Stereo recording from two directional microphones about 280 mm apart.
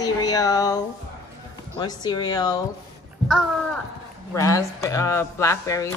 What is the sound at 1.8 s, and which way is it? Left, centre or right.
Speech, centre.